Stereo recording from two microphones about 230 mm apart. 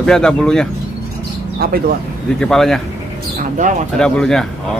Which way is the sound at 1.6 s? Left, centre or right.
Right.